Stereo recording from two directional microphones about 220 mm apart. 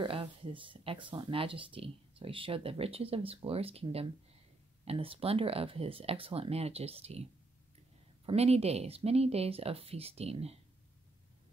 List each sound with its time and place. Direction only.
0.0 s speech: 25° right (ahead or behind)
8.3 s speech: 25° right (ahead or behind)